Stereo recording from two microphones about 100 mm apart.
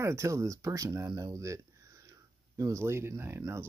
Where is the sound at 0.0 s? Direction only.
30° right (ahead or behind).